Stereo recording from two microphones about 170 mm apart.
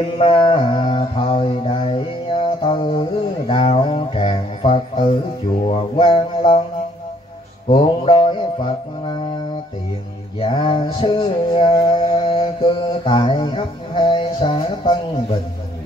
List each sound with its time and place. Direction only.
0.2 s mantra: 30° left (ahead or behind)
7.6 s music: 30° left (ahead or behind)
10.4 s mantra: 30° left (ahead or behind)